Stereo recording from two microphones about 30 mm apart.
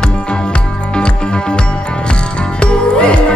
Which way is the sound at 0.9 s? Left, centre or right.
Left.